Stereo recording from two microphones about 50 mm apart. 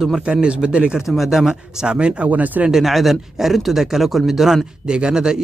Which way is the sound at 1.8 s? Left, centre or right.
Right.